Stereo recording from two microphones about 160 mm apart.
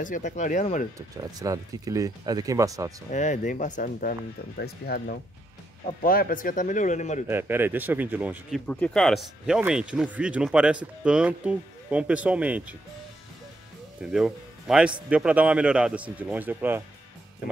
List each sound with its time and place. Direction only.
0.0 s speech: 50° left (ahead or behind)
0.9 s speech: 20° right (ahead or behind)
3.1 s speech: 50° left (ahead or behind); by 5.1 s 90° left
6.0 s speech: 65° left (ahead or behind)
7.2 s speech: 15° right (ahead or behind)
8.6 s speech: 5° left (ahead or behind); by 12.7 s 10° right (ahead or behind)
14.1 s speech: 5° right (ahead or behind)